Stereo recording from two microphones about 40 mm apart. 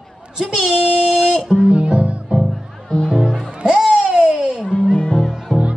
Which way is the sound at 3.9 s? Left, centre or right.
Right.